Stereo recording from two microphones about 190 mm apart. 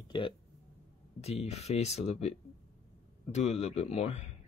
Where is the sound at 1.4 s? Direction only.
35° left (ahead or behind).